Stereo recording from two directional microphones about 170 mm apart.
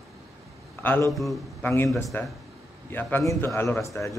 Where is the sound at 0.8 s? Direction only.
10° left (ahead or behind).